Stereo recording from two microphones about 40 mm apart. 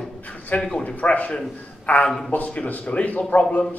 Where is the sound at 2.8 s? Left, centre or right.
Left.